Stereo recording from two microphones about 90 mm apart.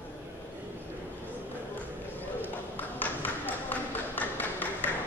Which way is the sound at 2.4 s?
20° left (ahead or behind).